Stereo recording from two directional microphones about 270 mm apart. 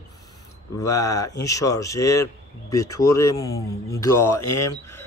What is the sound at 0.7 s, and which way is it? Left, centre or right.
A man's voice, centre.